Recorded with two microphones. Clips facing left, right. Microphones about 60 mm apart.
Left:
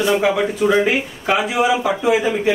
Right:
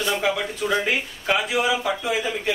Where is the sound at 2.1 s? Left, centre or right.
Left.